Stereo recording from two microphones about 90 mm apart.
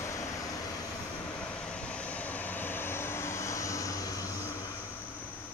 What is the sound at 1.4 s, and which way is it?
Vehicle, 10° left (ahead or behind).